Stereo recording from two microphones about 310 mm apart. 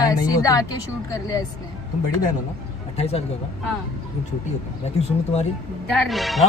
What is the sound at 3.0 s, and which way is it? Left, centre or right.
Speech, centre.